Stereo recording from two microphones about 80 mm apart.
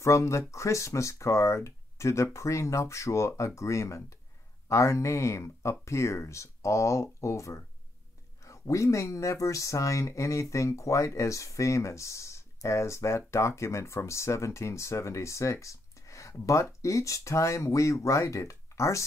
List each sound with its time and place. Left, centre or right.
0.0 s speech: left